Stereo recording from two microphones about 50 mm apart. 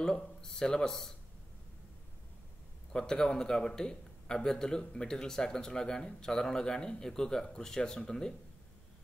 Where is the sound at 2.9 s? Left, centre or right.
Centre.